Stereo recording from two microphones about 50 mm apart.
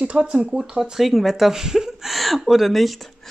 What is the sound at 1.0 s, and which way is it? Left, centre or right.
Speech, centre.